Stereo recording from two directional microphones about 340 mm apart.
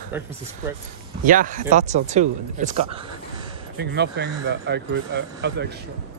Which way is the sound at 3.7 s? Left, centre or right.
Right.